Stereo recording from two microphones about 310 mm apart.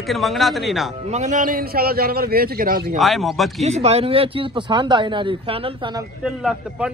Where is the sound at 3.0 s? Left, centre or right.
Centre.